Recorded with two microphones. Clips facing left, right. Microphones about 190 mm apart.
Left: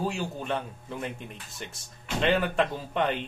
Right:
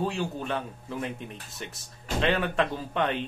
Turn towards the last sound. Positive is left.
turn(degrees=0)  # may be behind; listen again after turning